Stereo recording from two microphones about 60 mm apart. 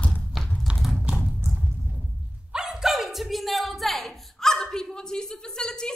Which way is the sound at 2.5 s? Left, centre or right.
Centre.